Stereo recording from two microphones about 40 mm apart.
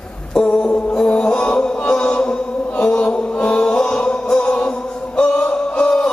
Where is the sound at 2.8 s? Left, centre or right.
Left.